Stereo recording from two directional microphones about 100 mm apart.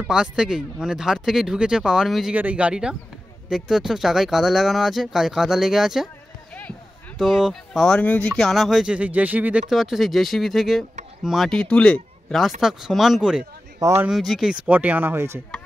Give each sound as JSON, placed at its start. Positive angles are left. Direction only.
{"t": 0.0, "sound": "speech", "side_deg": -5}
{"t": 2.3, "sound": "speech", "side_deg": -15}
{"t": 7.2, "sound": "speech", "side_deg": -5}
{"t": 8.0, "sound": "speech", "side_deg": 15}
{"t": 12.4, "sound": "speech", "side_deg": 0}
{"t": 13.7, "sound": "speech", "side_deg": -30}
{"t": 14.0, "sound": "speech", "side_deg": 0}
{"t": 14.7, "sound": "speech", "side_deg": -15}